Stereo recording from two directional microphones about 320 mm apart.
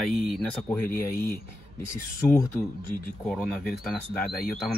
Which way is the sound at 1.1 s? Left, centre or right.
Left.